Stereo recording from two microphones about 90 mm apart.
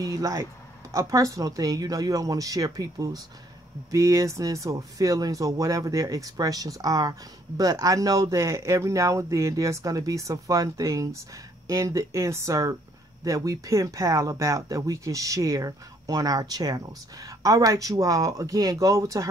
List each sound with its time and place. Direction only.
0.0 s speech: 40° right (ahead or behind)